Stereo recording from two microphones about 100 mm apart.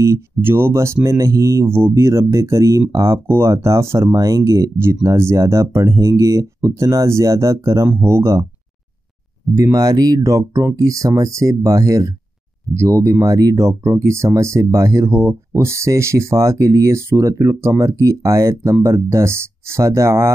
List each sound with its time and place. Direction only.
0.0 s speech: 25° right (ahead or behind)
9.6 s speech: 40° right (ahead or behind)